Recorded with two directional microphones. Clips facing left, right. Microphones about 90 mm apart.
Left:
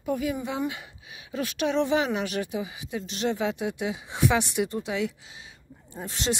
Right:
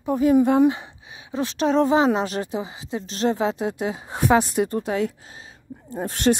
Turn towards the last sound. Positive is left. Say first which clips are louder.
# right 9 dB
turn(degrees=-50)  # may be behind; listen again after turning